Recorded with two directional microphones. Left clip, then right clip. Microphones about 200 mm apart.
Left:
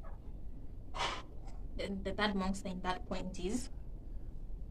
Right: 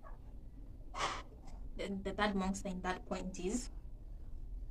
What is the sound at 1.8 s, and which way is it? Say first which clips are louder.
A woman's voice: left 1 dB; centre (ahead or behind).